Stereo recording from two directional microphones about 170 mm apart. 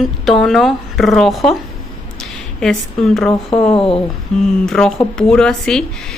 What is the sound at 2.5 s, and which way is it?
Speech, centre (ahead or behind).